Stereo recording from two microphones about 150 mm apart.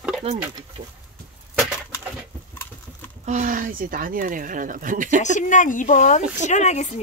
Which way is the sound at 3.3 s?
60° right (ahead or behind).